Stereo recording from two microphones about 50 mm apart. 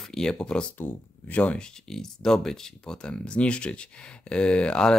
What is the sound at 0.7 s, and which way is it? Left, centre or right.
Speech, left.